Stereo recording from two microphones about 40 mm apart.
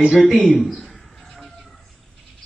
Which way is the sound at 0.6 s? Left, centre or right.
Centre.